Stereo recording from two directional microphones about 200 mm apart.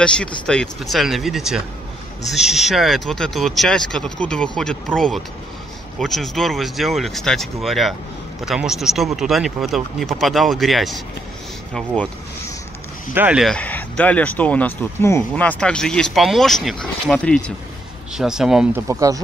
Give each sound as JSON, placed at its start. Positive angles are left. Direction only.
{"t": 0.5, "sound": "speech", "side_deg": 0}
{"t": 13.1, "sound": "speech", "side_deg": -5}
{"t": 18.9, "sound": "speech", "side_deg": -15}